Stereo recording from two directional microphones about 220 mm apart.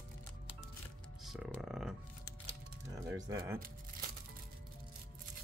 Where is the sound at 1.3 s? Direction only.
Centre (ahead or behind).